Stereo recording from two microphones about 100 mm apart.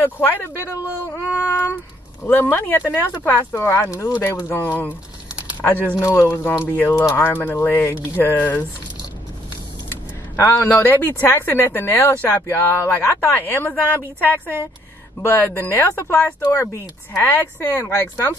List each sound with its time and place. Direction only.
0.0 s speech: 20° left (ahead or behind)
5.9 s speech: 30° left (ahead or behind)
10.4 s speech: 25° left (ahead or behind)